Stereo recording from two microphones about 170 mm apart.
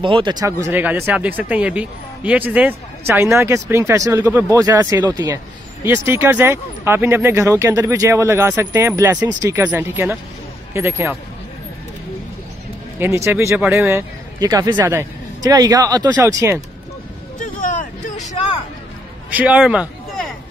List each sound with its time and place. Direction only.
0.0 s speech: 30° right (ahead or behind)
13.0 s a man's voice: 15° right (ahead or behind)
17.4 s vehicle: 50° left (ahead or behind)
19.3 s speech: 10° right (ahead or behind)